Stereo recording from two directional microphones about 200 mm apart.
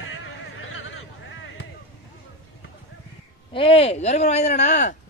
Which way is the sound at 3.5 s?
25° left (ahead or behind).